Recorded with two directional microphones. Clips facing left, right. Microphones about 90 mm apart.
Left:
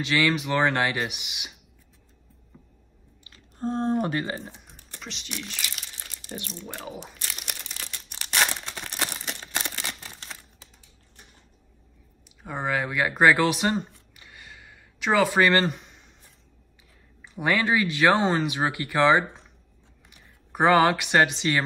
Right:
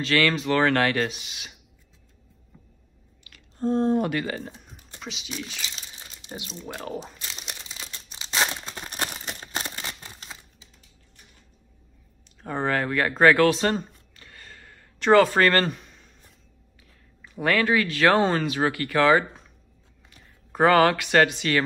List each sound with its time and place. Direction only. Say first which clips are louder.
0.0 s speech: right 1 dB; 20° left (ahead or behind)
3.3 s chewing: right 4 dB; 30° left (ahead or behind)
5.0 s speech: right 2 dB; 5° right (ahead or behind)
5.6 s crumpling: left 1 dB; 25° right (ahead or behind); by 7.9 s 5° right (ahead or behind)
7.9 s crumpling: even; 20° right (ahead or behind)
9.3 s camera: even; 10° right (ahead or behind)
9.9 s a sound: even; 10° right (ahead or behind)
12.4 s speech: right 2 dB; 10° left (ahead or behind)
17.2 s speech: right 1 dB; 20° left (ahead or behind)